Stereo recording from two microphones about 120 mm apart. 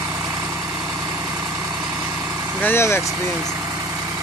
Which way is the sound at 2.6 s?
20° left (ahead or behind).